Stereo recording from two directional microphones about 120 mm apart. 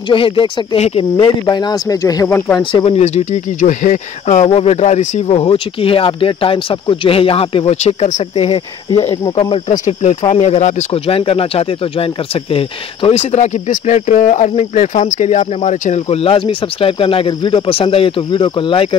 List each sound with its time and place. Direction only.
0.1 s speech: 45° left (ahead or behind)
0.7 s speech: 60° left (ahead or behind)
1.5 s speech: 35° left (ahead or behind)
2.2 s speech: 15° left (ahead or behind)
2.7 s speech: 50° left (ahead or behind); by 4.5 s 85° left
4.5 s speech: 60° left (ahead or behind); by 14.5 s 90° left
14.5 s speech: 75° left (ahead or behind)
16.2 s speech: 50° left (ahead or behind)